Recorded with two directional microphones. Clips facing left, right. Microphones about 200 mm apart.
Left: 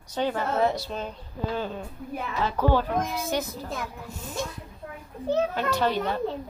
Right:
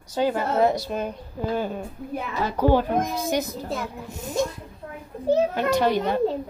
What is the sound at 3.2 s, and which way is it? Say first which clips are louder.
Speech: right 4 dB; 15° right (ahead or behind).